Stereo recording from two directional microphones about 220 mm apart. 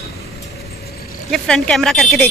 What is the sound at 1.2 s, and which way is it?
Speech, centre (ahead or behind).